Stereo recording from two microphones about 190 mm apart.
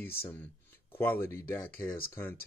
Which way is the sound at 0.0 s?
10° left (ahead or behind).